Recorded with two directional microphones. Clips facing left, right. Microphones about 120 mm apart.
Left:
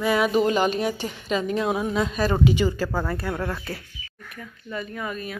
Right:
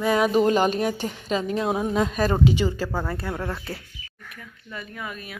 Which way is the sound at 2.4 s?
25° right (ahead or behind).